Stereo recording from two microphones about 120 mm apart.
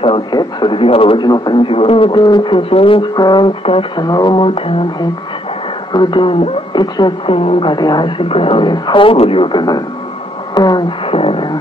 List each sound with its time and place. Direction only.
0.0 s a man's voice: 40° left (ahead or behind)
3.6 s a man's voice: 50° left (ahead or behind)
4.0 s speech: 35° left (ahead or behind)
5.9 s speech: 40° left (ahead or behind)
7.7 s a man's voice: 35° left (ahead or behind)
10.5 s a sound: 35° left (ahead or behind)
11.1 s beatboxing: 50° left (ahead or behind)